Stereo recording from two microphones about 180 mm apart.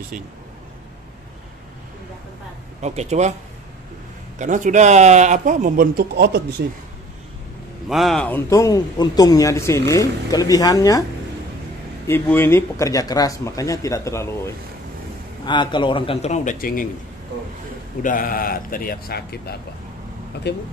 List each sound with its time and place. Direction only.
2.8 s speech: 40° right (ahead or behind)
4.4 s speech: 45° right (ahead or behind); by 6.4 s 65° right (ahead or behind)
7.9 s a man's voice: centre (ahead or behind); by 11.1 s 20° left (ahead or behind)
12.1 s a man's voice: 10° left (ahead or behind)
15.4 s a man's voice: 25° left (ahead or behind); by 16.8 s 50° left (ahead or behind)
18.0 s a man's voice: 50° left (ahead or behind); by 20.6 s 65° left (ahead or behind)